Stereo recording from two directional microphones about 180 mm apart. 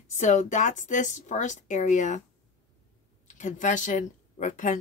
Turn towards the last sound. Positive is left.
turn(degrees=45)  # may be behind; listen again after turning